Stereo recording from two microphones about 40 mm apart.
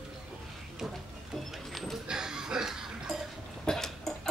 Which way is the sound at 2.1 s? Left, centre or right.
Centre.